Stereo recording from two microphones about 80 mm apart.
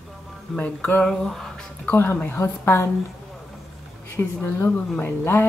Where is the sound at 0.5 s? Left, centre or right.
Left.